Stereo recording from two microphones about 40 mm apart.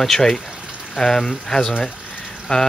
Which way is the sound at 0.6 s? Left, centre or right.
Right.